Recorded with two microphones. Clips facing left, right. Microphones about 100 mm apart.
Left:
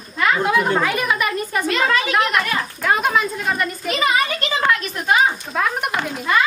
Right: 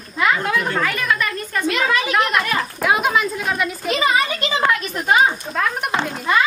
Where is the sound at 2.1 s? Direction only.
Centre (ahead or behind).